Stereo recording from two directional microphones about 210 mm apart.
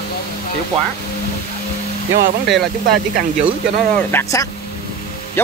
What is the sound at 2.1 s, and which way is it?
Speech, 45° right (ahead or behind).